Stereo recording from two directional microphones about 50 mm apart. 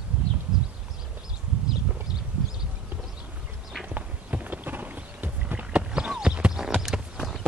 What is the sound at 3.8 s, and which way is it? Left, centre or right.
Clip-clop, right.